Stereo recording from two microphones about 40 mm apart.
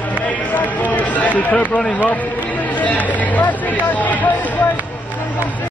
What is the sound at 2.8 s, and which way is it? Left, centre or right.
Speech, left.